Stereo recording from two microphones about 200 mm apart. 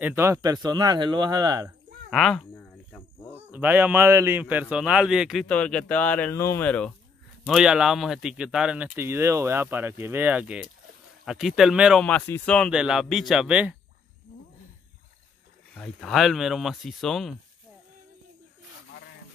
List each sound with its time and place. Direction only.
0.0 s speech: 10° right (ahead or behind)
2.0 s cricket: centre (ahead or behind)
3.3 s a man's voice: 10° right (ahead or behind); by 6.9 s 5° left (ahead or behind)
7.4 s a man's voice: 5° right (ahead or behind)
15.7 s a man's voice: 5° left (ahead or behind)